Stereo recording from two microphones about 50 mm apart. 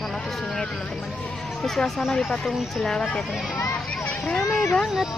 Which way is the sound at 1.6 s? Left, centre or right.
Centre.